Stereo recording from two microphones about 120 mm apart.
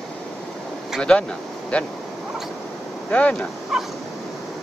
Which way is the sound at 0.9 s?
5° left (ahead or behind).